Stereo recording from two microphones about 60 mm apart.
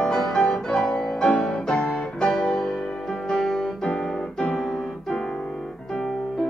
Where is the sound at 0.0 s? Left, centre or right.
Centre.